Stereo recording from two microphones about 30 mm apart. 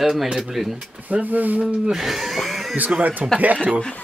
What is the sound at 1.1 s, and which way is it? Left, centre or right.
Speech, right.